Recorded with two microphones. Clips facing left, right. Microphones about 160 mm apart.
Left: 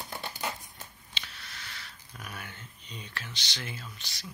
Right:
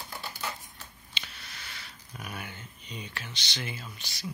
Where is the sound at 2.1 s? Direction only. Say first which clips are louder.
Right 3 dB; 10° right (ahead or behind).